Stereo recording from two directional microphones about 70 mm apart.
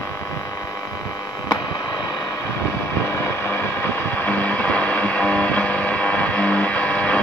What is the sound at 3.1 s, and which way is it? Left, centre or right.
Music, left.